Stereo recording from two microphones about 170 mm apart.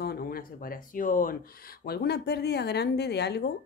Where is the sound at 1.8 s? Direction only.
70° left (ahead or behind).